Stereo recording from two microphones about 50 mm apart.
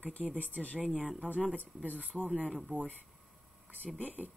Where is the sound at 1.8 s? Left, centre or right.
Right.